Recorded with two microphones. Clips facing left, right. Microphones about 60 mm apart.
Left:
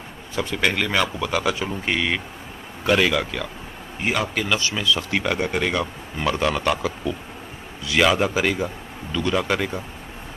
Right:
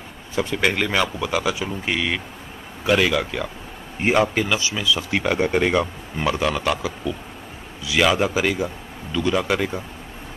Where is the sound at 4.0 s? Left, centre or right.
Right.